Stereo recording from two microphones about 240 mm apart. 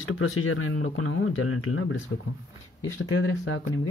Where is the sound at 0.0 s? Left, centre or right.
Left.